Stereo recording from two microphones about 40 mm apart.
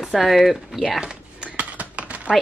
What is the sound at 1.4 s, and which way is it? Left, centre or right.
Typing, right.